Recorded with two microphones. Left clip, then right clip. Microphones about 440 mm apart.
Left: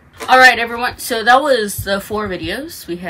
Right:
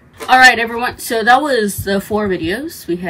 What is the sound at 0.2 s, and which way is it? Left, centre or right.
Speech, centre.